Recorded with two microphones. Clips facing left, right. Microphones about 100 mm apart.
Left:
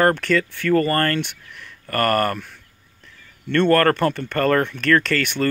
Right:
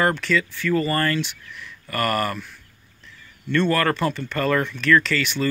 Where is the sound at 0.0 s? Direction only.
55° left (ahead or behind).